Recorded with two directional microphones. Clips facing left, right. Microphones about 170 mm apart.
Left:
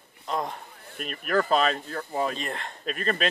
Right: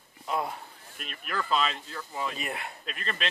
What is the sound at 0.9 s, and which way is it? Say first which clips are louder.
Speech: left 9 dB; 45° left (ahead or behind).